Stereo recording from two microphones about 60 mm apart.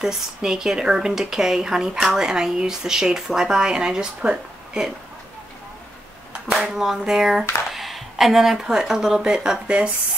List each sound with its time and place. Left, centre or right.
0.0 s speech: centre
6.3 s a sound: right
6.7 s speech: centre